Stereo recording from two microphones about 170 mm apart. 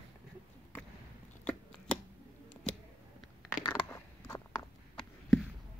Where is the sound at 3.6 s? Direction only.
15° left (ahead or behind).